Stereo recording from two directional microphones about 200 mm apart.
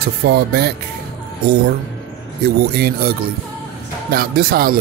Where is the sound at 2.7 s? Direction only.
50° right (ahead or behind).